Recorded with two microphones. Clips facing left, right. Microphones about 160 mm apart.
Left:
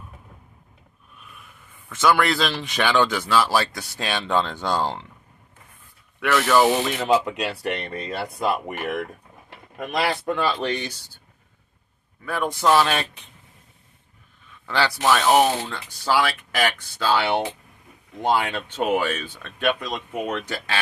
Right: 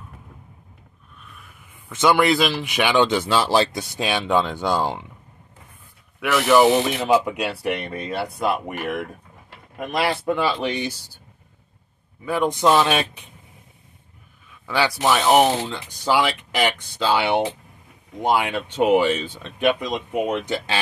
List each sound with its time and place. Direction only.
1.2 s a sound: centre (ahead or behind)
1.9 s speech: 20° right (ahead or behind)
6.1 s speech: 5° right (ahead or behind)
6.9 s speech: 5° right (ahead or behind)
9.8 s speech: centre (ahead or behind)
12.3 s speech: 20° right (ahead or behind)
14.7 s speech: 10° right (ahead or behind)